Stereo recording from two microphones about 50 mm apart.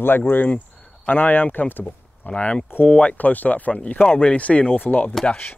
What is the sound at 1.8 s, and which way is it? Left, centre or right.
Speech, left.